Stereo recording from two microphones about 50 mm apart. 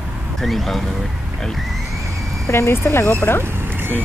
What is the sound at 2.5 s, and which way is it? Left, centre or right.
Speech, left.